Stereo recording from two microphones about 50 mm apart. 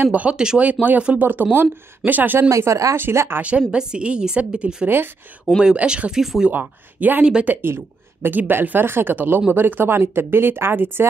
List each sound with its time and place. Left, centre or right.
0.0 s a woman's voice: right
2.5 s speech: right
3.0 s speech: right
3.4 s a woman's voice: right
6.1 s speech: centre
6.5 s speech: right
7.6 s speech: right
8.4 s speech: right